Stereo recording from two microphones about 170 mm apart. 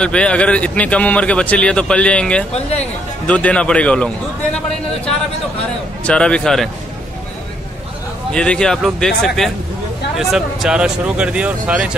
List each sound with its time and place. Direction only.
0.0 s speech: 5° left (ahead or behind)
2.5 s speech: 40° left (ahead or behind)
3.3 s speech: 5° left (ahead or behind)
6.0 s speech: 5° left (ahead or behind)
8.3 s speech: 5° left (ahead or behind)